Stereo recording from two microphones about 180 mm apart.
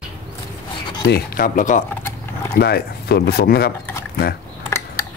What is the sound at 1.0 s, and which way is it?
Speech, 60° left (ahead or behind).